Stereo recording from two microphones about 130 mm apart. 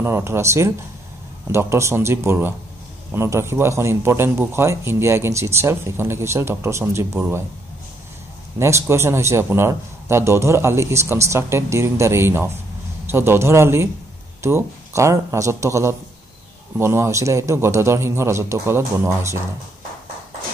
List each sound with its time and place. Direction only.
0.0 s a man's voice: 20° right (ahead or behind)
8.5 s a man's voice: 20° right (ahead or behind)